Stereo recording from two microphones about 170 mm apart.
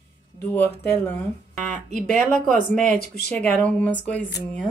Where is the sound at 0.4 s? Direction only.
10° left (ahead or behind).